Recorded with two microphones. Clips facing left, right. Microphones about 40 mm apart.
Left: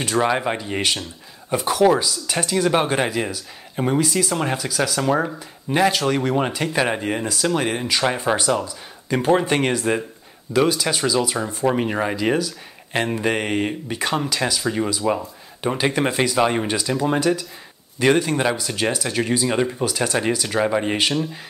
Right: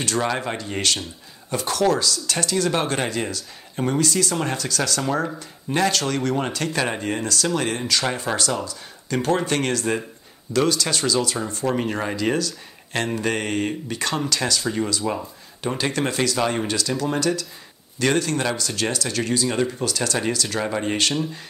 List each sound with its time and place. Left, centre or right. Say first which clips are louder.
0.0 s speech: left 4 dB; centre